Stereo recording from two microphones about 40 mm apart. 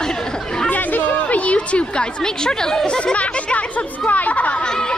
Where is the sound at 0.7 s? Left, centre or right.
Left.